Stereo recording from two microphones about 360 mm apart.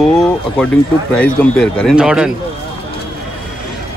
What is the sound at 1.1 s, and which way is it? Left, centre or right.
Speech, centre.